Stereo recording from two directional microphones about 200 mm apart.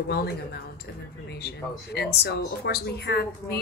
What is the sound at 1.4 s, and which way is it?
Speech, 55° left (ahead or behind).